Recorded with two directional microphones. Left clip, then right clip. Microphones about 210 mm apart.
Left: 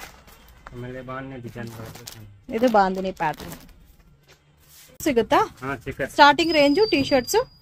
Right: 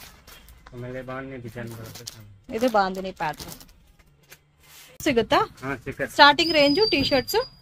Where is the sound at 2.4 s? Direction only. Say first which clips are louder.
Left 3 dB; 20° left (ahead or behind).